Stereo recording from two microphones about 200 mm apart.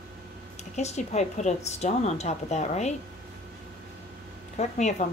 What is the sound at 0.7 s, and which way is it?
Speech, 35° left (ahead or behind).